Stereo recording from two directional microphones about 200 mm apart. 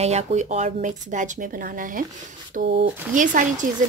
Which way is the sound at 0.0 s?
35° right (ahead or behind).